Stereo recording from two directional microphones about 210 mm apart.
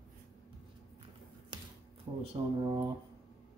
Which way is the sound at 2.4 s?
20° right (ahead or behind).